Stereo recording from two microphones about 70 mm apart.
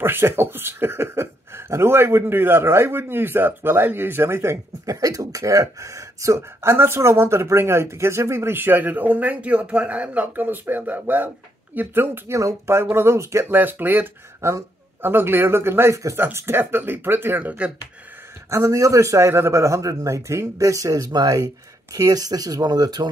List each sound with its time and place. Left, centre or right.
0.0 s speech: right
5.0 s speech: right
13.6 s speech: right
14.4 s a man's voice: right
15.0 s speech: right
18.5 s a man's voice: right